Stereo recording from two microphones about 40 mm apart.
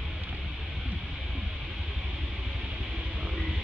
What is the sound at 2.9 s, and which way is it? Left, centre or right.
Music, centre.